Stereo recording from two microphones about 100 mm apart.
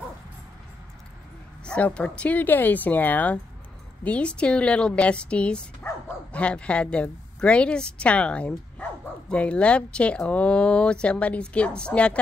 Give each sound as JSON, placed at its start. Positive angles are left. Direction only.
{"t": 1.6, "sound": "speech", "side_deg": 10}